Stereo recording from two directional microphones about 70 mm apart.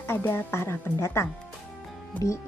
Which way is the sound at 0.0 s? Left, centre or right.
Left.